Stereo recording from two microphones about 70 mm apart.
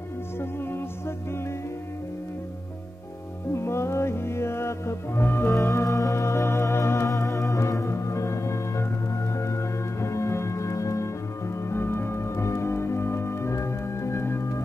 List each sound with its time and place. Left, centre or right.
0.4 s music: left
3.5 s music: left
5.5 s music: left
7.1 s music: left